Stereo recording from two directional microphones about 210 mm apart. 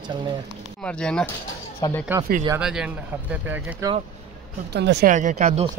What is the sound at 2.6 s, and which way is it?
Speech, 5° right (ahead or behind).